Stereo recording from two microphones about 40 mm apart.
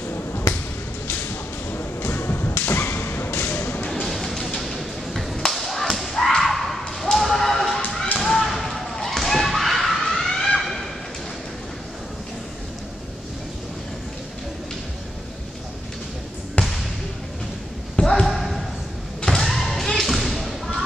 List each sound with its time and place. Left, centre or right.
1.7 s thump: left
3.9 s music: centre
4.6 s a sound: centre
5.5 s whip: centre
6.3 s a sound: centre
8.2 s thump: centre
16.6 s basketball bounce: left
17.9 s a sound: centre
18.2 s basketball bounce: centre
19.2 s thump: centre